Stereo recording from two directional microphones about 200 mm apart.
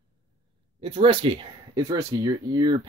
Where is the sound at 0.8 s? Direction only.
25° right (ahead or behind).